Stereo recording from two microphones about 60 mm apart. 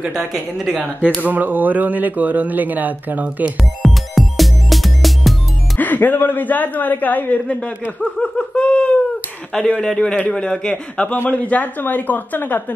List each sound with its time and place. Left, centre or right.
1.2 s speech: right
3.8 s music: centre
5.8 s speech: left
8.0 s laughter: centre
9.5 s a man's voice: centre; by 12.6 s left